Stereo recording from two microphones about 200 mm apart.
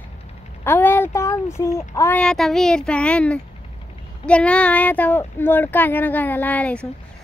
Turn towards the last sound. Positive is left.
turn(degrees=5)  # may be behind; listen again after turning